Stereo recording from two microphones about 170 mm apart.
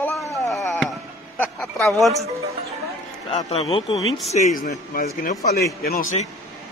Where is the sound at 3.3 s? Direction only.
35° left (ahead or behind).